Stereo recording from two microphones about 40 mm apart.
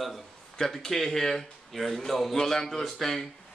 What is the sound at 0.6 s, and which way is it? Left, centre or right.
A man's voice, centre.